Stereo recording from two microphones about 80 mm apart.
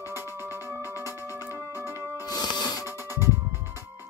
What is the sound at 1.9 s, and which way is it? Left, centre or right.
Music, left.